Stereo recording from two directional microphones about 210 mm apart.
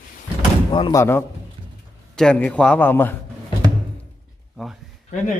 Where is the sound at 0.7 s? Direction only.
20° left (ahead or behind).